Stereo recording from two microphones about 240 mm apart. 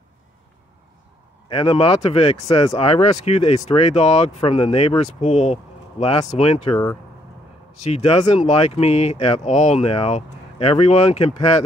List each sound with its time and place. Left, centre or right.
1.5 s speech: left
7.9 s speech: left